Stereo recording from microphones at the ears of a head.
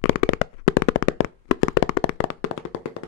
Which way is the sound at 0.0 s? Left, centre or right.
Left.